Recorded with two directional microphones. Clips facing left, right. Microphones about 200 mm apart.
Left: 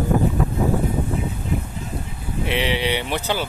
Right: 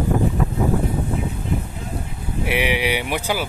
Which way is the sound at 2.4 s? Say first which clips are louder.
Right 1 dB; 10° right (ahead or behind).